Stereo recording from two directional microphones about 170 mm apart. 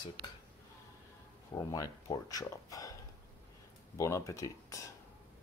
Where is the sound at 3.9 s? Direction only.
20° left (ahead or behind).